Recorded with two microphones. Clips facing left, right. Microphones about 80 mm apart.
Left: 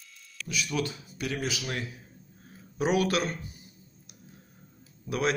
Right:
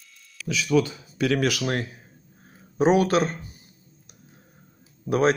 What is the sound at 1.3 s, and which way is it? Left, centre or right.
Speech, right.